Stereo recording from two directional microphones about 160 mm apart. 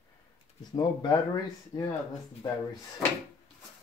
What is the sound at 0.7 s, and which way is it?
Speech, 25° left (ahead or behind).